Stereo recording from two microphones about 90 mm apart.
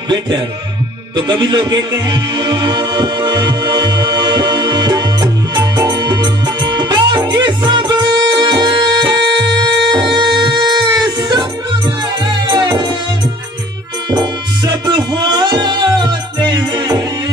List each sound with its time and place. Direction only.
1.1 s speech: 55° right (ahead or behind)
2.0 s music: 55° right (ahead or behind)
14.1 s music: 55° right (ahead or behind)